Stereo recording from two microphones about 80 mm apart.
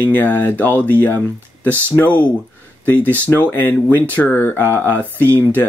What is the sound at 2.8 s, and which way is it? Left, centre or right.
Speech, left.